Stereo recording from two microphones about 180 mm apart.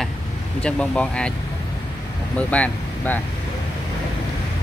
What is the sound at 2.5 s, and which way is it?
Speech, 10° left (ahead or behind).